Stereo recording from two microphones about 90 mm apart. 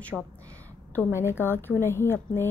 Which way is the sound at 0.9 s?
30° left (ahead or behind).